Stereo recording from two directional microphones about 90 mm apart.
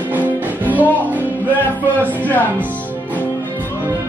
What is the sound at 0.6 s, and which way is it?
Music, 20° right (ahead or behind).